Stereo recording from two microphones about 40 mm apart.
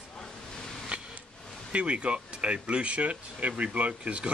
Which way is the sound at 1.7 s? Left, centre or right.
Right.